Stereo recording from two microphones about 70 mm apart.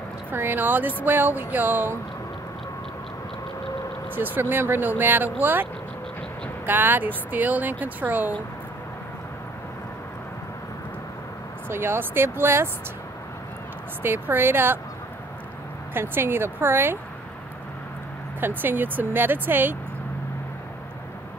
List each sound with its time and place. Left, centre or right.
0.3 s speech: right
4.1 s speech: right
11.7 s speech: right
14.0 s speech: right
15.9 s speech: right
18.4 s speech: right